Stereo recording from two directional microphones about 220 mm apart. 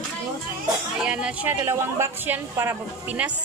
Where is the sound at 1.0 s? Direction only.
5° right (ahead or behind).